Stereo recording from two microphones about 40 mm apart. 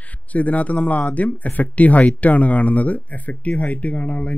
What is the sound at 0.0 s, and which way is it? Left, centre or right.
Speech, left.